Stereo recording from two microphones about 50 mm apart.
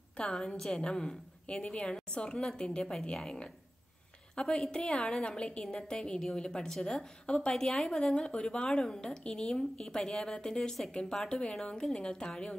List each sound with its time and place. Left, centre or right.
0.2 s a woman's voice: centre